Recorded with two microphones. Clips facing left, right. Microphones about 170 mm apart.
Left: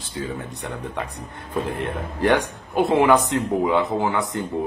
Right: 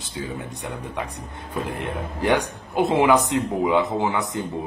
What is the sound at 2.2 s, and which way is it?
Speech, 15° right (ahead or behind).